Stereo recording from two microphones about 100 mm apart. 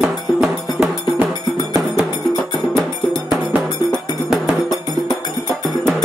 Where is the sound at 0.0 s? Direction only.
15° right (ahead or behind).